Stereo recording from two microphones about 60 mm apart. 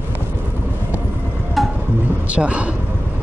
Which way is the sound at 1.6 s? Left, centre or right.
Centre.